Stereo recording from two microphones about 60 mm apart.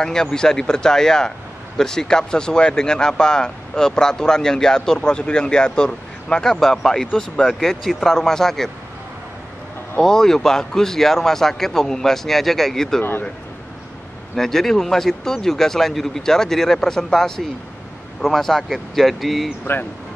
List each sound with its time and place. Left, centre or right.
0.0 s speech: centre
9.9 s speech: centre
14.3 s speech: centre
19.6 s speech: left